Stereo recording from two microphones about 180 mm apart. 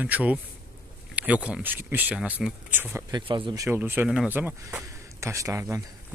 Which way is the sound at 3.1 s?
25° right (ahead or behind).